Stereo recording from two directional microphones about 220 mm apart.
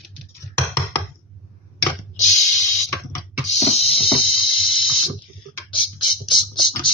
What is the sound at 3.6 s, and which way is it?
Music, 30° left (ahead or behind).